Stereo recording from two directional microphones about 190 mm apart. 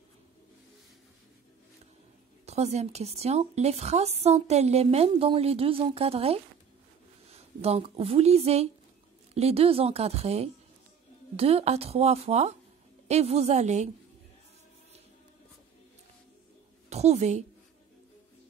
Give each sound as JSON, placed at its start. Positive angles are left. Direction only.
{"t": 2.4, "sound": "a woman's voice", "side_deg": -35}
{"t": 7.6, "sound": "a woman's voice", "side_deg": -30}
{"t": 16.9, "sound": "a woman's voice", "side_deg": -35}